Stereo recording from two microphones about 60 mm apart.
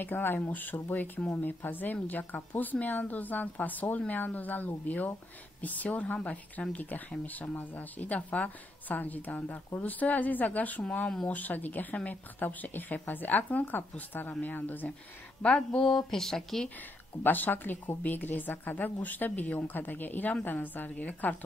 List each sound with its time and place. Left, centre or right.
0.0 s a woman's voice: left
15.4 s a sound: centre
17.2 s a woman's voice: left